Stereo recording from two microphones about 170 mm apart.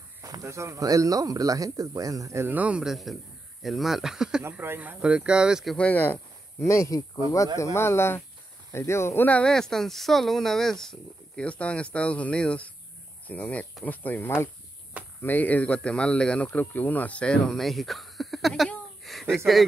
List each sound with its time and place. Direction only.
0.2 s speech: 20° right (ahead or behind); by 19.6 s centre (ahead or behind)